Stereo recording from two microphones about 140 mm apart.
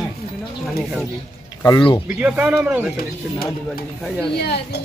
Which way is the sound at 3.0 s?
90° left.